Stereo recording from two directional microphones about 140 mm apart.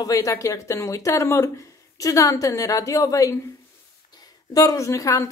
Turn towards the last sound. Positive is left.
turn(degrees=20)  # may be behind; listen again after turning